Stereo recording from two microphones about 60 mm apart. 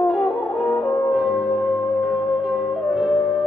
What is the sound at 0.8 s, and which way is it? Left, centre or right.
French horn, left.